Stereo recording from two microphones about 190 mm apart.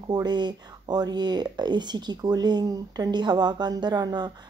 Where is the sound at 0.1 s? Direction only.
20° right (ahead or behind).